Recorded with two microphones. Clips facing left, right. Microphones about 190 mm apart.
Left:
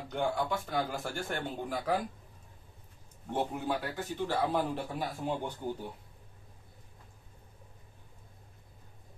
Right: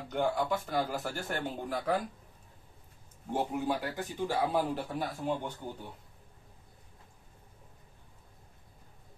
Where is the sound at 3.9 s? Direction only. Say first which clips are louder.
Even; 10° right (ahead or behind).